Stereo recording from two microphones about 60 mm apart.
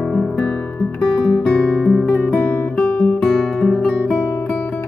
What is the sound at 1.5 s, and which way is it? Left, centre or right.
Guitar, centre.